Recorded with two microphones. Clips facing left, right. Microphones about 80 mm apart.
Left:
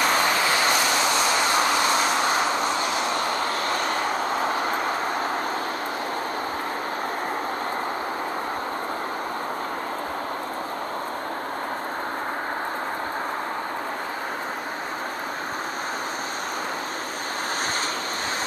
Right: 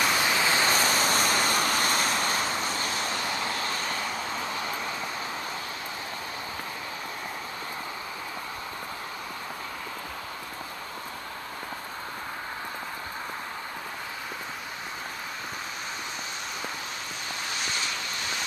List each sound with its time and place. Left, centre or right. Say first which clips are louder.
0.0 s vehicle: left 4 dB; left
0.7 s vehicle: left 3 dB; right
1.5 s vehicle: left 5 dB; left